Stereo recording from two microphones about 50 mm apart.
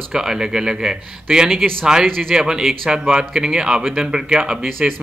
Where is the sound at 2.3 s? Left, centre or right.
Centre.